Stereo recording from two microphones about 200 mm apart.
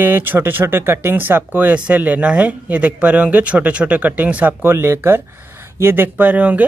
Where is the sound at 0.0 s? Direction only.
10° right (ahead or behind).